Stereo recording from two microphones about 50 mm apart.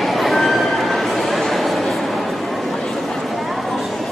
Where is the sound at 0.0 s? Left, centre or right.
Centre.